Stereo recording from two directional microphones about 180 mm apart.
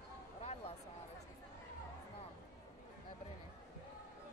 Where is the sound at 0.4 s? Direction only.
35° left (ahead or behind).